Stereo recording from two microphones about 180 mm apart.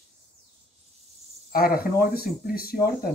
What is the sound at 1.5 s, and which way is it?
Speech, 55° left (ahead or behind).